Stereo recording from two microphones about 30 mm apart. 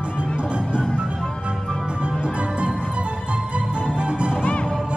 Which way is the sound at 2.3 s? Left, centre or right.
Right.